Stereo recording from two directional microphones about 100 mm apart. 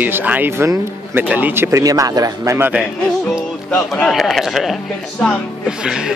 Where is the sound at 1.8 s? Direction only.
35° right (ahead or behind).